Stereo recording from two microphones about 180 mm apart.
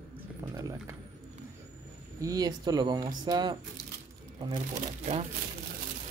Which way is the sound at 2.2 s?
20° right (ahead or behind).